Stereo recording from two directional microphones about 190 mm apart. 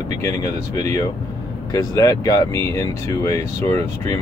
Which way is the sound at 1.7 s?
15° left (ahead or behind).